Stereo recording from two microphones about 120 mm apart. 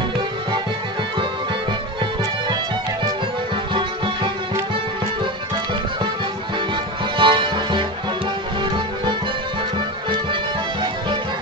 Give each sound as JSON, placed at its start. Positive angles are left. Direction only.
{"t": 3.7, "sound": "music", "side_deg": -45}
{"t": 7.2, "sound": "music", "side_deg": -40}